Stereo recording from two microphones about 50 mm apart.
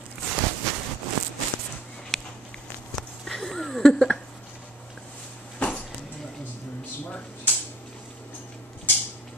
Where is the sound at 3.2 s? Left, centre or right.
Centre.